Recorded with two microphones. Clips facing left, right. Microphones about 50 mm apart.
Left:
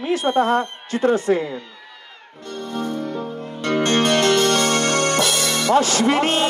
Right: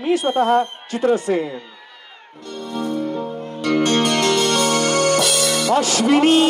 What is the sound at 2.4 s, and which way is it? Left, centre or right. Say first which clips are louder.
Music: right 1 dB; left.